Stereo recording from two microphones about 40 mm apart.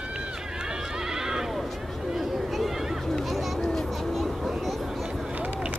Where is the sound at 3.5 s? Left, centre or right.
Centre.